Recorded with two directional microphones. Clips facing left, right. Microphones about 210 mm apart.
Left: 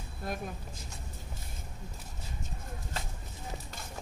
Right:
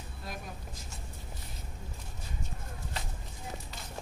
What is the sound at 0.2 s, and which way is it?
Speech, 50° left (ahead or behind).